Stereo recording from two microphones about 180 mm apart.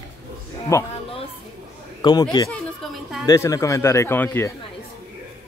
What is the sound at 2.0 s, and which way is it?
Chatter, 20° left (ahead or behind).